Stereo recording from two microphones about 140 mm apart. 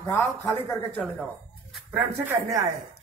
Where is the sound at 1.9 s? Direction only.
15° right (ahead or behind).